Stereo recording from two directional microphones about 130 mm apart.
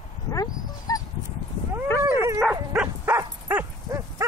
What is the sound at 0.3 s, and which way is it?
Dog, 25° left (ahead or behind).